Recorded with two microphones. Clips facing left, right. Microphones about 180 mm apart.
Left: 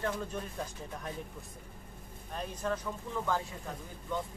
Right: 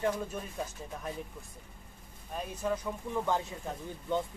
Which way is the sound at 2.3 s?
10° right (ahead or behind).